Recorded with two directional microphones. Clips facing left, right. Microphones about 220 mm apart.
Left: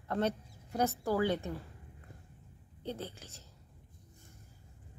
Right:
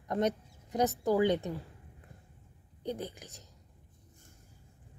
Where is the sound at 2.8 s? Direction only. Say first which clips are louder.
Right 3 dB; 15° right (ahead or behind).